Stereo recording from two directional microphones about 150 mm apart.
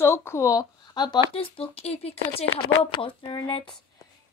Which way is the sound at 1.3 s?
40° left (ahead or behind).